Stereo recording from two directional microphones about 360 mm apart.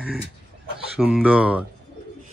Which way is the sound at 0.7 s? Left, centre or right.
Centre.